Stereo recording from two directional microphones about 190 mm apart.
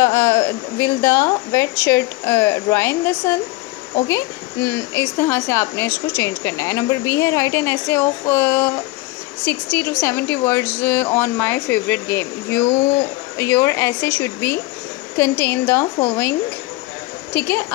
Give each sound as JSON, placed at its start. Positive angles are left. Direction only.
{"t": 0.0, "sound": "a woman's voice", "side_deg": 15}